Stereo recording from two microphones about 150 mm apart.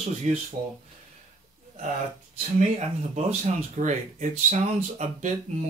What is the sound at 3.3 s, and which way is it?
Speech, 50° right (ahead or behind).